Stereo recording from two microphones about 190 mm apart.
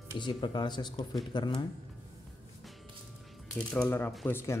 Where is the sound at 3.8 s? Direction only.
10° left (ahead or behind).